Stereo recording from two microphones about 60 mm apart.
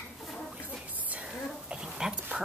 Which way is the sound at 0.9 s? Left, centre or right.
Right.